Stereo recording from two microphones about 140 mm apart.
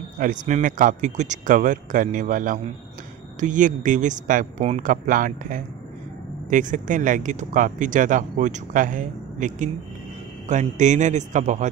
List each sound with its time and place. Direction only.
0.2 s a man's voice: 65° right (ahead or behind)